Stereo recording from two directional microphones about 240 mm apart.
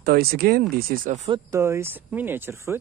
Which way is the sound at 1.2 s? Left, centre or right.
Centre.